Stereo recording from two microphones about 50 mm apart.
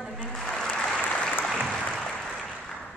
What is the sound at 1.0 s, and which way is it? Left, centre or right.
Applause, left.